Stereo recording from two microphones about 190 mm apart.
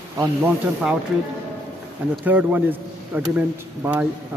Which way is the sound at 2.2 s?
10° right (ahead or behind).